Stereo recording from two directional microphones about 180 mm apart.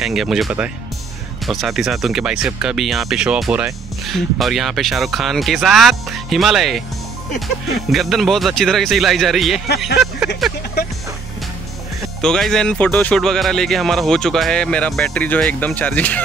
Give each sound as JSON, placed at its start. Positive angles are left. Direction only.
{"t": 0.0, "sound": "speech", "side_deg": 0}
{"t": 7.9, "sound": "speech", "side_deg": 0}
{"t": 12.2, "sound": "speech", "side_deg": 5}